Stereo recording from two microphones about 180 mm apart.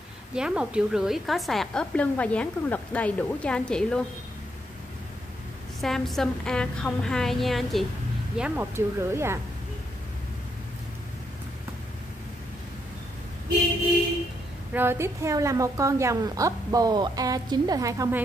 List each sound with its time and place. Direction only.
0.3 s a woman's voice: 5° right (ahead or behind)
5.8 s a woman's voice: centre (ahead or behind); by 9.4 s 15° right (ahead or behind)
14.7 s a woman's voice: 10° right (ahead or behind)